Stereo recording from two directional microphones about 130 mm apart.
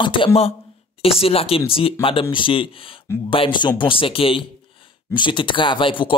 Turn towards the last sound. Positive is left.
turn(degrees=40)  # may be behind; listen again after turning